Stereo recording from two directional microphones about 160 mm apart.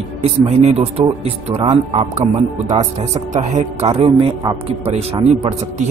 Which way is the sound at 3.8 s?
35° right (ahead or behind).